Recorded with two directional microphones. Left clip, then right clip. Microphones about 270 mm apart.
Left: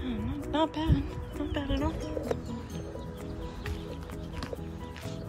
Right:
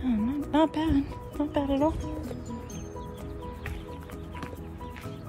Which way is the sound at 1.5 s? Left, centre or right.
Centre.